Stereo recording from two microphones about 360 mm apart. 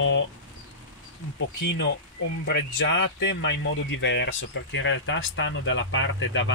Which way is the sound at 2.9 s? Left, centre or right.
Left.